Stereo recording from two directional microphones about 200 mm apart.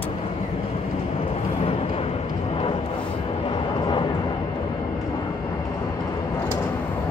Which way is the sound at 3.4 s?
25° left (ahead or behind).